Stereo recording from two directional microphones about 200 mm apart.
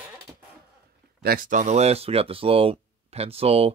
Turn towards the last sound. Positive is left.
turn(degrees=-30)  # may be behind; listen again after turning